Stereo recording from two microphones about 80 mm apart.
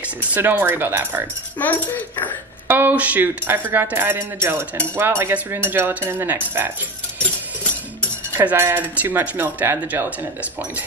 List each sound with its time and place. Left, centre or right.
0.3 s speech: right
1.6 s speech: left
2.7 s speech: right
8.4 s speech: right